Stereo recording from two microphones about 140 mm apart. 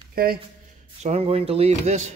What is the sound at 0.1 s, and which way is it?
Speech, 90° right.